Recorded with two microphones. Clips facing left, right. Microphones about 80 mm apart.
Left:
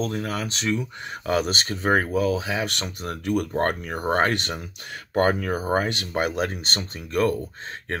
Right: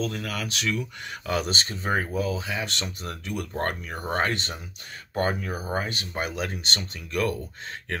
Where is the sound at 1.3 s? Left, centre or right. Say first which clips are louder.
Left 4 dB; left.